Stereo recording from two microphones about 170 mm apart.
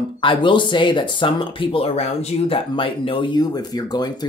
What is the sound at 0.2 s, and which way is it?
Speech, 30° left (ahead or behind).